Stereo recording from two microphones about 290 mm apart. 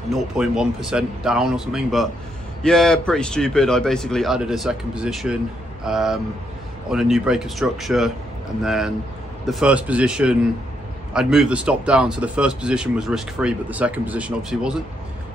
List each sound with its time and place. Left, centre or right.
0.1 s speech: centre